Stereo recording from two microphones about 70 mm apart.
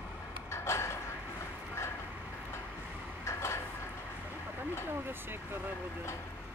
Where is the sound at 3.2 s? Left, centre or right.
Left.